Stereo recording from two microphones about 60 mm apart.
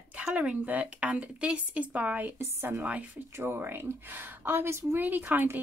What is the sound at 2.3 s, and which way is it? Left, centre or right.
Speech, right.